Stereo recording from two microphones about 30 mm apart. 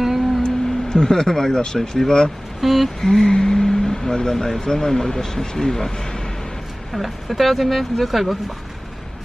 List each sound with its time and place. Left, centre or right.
0.4 s speech: left
2.6 s speech: centre
3.0 s speech: centre
6.9 s speech: centre